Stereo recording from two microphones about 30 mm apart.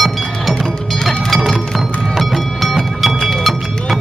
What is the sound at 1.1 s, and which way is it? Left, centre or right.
Music, centre.